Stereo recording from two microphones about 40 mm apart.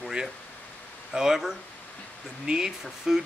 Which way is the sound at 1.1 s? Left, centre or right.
Centre.